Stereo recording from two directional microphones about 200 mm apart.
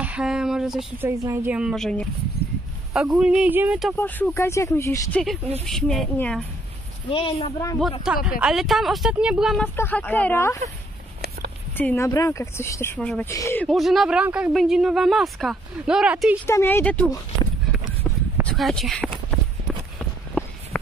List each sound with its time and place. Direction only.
0.0 s a sound: 5° right (ahead or behind)
1.0 s a woman's voice: 15° right (ahead or behind); by 2.0 s 5° left (ahead or behind)
2.4 s a sound: 50° left (ahead or behind)
2.9 s speech: centre (ahead or behind)
3.9 s speech: 10° left (ahead or behind)
5.7 s speech: centre (ahead or behind)
7.1 s a woman's voice: 25° left (ahead or behind)
8.0 s speech: 5° right (ahead or behind)
9.8 s speech: 10° left (ahead or behind)
11.7 s speech: 10° left (ahead or behind)
13.7 s speech: centre (ahead or behind)
16.4 s speech: 10° left (ahead or behind)
18.4 s speech: centre (ahead or behind)
20.7 s a sound: 5° left (ahead or behind)